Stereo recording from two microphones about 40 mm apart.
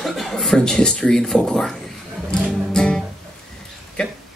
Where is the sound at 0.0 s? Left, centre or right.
Centre.